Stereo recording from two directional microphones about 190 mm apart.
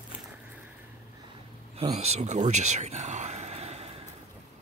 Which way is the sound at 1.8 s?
35° right (ahead or behind).